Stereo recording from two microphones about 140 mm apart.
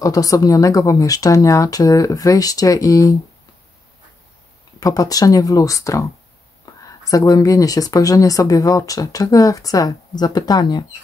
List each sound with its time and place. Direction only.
0.0 s speech: 25° left (ahead or behind)
4.7 s speech: 25° left (ahead or behind)